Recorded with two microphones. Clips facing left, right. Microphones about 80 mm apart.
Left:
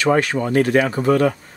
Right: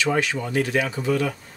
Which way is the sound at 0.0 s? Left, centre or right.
Left.